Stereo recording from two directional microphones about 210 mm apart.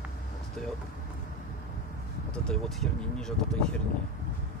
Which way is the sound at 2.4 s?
Centre (ahead or behind).